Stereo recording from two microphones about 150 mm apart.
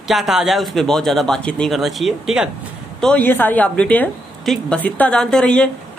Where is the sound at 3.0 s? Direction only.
10° left (ahead or behind).